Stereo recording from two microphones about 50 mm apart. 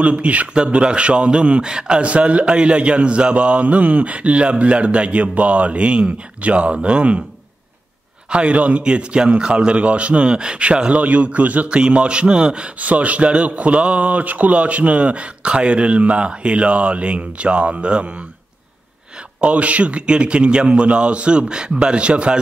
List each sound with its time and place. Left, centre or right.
0.0 s a man's voice: right
8.3 s a man's voice: right
19.4 s a man's voice: right